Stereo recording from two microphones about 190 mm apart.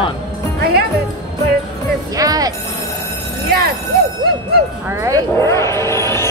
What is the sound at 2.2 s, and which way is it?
Speech, 20° right (ahead or behind).